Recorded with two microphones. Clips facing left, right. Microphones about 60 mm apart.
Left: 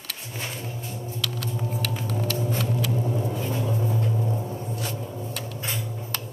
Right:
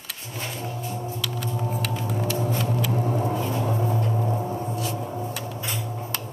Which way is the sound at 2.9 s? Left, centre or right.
Right.